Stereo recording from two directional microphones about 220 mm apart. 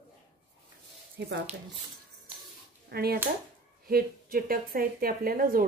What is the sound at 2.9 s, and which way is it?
A woman's voice, 45° right (ahead or behind).